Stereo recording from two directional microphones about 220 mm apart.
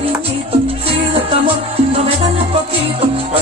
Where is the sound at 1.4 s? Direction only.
25° right (ahead or behind).